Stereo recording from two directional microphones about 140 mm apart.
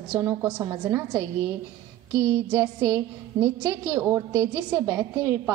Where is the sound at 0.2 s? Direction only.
20° right (ahead or behind).